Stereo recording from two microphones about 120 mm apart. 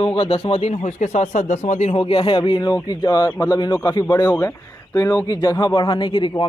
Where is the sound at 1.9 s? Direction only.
50° left (ahead or behind).